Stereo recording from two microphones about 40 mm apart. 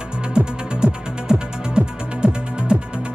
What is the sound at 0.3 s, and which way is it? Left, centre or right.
Music, right.